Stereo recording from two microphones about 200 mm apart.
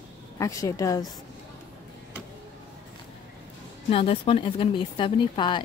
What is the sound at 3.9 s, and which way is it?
Speech, 30° left (ahead or behind).